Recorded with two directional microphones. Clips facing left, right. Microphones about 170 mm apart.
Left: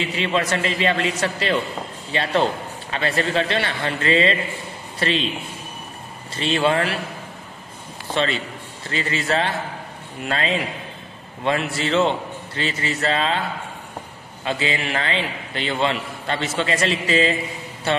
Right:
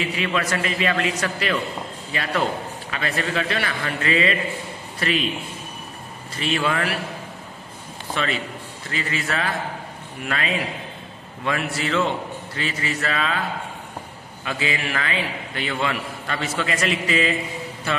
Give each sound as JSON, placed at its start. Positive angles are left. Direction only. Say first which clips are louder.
{"t": 0.0, "sound": "a man's voice", "louder": "left 2 dB", "side_deg": 25}
{"t": 6.3, "sound": "a man's voice", "louder": "left 4 dB", "side_deg": 30}
{"t": 8.1, "sound": "a man's voice", "louder": "left 3 dB", "side_deg": 30}
{"t": 14.4, "sound": "a man's voice", "louder": "left 2 dB", "side_deg": 30}